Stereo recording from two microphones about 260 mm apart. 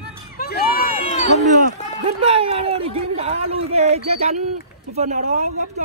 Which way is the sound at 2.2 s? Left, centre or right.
Right.